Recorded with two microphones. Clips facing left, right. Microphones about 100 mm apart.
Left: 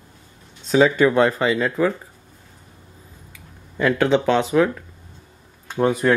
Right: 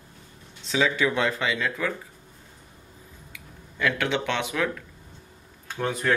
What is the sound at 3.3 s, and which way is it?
Speech, 35° left (ahead or behind).